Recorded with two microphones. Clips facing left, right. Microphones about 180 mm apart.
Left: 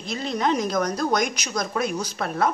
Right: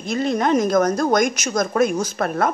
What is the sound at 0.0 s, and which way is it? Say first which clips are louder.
A woman's voice: right 5 dB; 50° right (ahead or behind).